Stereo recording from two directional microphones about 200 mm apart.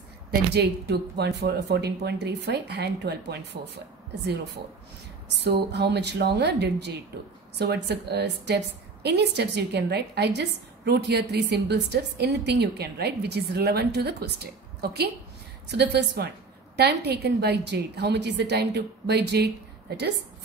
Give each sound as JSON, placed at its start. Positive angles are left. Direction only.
{"t": 0.3, "sound": "a woman's voice", "side_deg": -55}
{"t": 5.4, "sound": "a woman's voice", "side_deg": -55}